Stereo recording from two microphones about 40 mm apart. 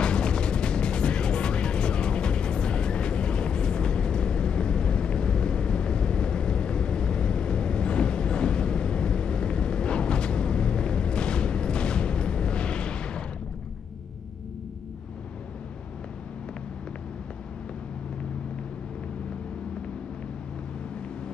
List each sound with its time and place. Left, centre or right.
0.0 s music: left